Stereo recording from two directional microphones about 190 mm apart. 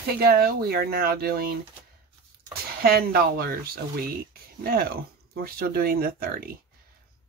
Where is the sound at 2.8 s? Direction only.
50° right (ahead or behind).